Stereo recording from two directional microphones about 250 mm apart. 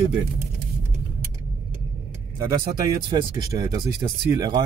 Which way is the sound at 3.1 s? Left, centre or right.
Centre.